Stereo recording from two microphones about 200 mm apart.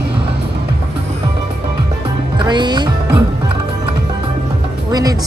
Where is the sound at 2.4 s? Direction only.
20° right (ahead or behind).